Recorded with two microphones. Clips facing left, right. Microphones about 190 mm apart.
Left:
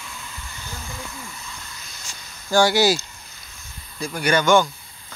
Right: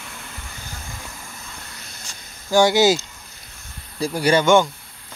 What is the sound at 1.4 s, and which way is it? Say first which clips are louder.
Hiss: even; 55° right (ahead or behind).